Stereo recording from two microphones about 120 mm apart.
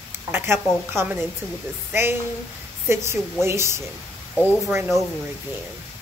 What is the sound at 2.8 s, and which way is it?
Speech, 20° right (ahead or behind).